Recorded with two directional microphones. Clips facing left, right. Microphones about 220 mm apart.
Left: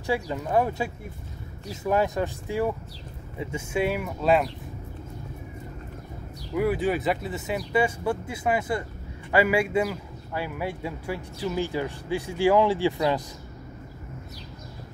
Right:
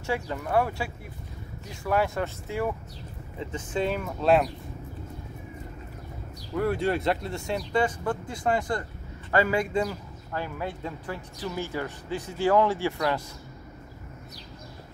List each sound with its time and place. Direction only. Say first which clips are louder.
0.0 s speech: left 3 dB; 15° left (ahead or behind)
6.5 s speech: left 2 dB; 5° left (ahead or behind)